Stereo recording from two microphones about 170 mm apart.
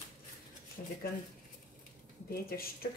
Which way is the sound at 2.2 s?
60° left (ahead or behind).